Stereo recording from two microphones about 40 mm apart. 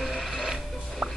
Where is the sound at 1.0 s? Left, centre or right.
Right.